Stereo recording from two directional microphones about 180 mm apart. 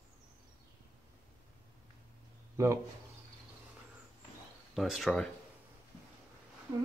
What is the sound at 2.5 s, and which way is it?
Speech, 15° right (ahead or behind).